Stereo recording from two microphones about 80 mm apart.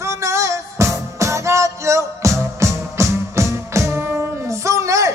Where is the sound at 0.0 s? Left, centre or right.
Right.